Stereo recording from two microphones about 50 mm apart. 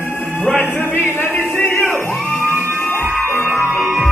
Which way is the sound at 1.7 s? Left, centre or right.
Left.